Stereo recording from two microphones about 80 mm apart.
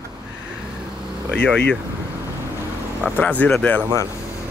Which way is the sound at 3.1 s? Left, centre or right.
Centre.